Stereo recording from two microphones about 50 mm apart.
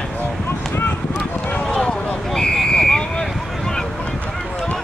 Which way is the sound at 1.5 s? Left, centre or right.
Centre.